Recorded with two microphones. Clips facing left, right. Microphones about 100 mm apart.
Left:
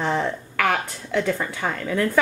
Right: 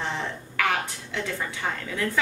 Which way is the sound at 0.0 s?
50° left (ahead or behind).